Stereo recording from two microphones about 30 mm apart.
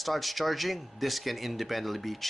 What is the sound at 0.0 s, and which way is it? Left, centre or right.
Speech, centre.